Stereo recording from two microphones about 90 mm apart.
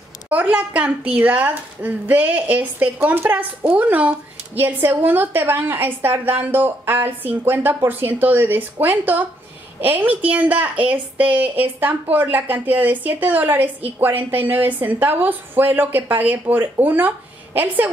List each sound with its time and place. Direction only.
0.3 s speech: 15° right (ahead or behind)